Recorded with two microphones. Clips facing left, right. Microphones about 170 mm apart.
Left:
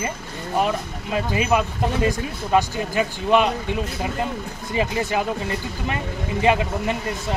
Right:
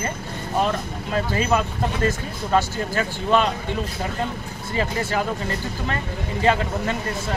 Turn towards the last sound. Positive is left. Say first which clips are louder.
# left 1 dB
turn(degrees=15)  # may be behind; listen again after turning